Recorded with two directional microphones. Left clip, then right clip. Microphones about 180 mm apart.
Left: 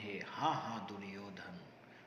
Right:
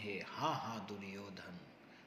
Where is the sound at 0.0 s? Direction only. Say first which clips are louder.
Left 2 dB; 50° right (ahead or behind).